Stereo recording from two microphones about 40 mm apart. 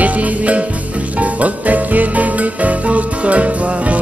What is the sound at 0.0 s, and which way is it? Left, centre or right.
Music, right.